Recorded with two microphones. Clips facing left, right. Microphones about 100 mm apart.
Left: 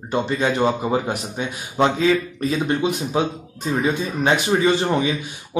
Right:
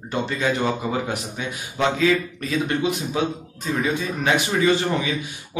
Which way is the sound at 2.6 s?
25° left (ahead or behind).